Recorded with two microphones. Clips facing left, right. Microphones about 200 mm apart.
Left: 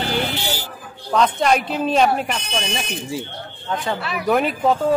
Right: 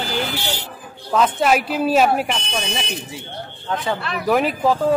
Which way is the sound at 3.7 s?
Centre (ahead or behind).